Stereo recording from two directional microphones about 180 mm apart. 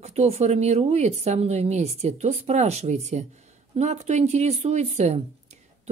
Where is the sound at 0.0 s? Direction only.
35° right (ahead or behind).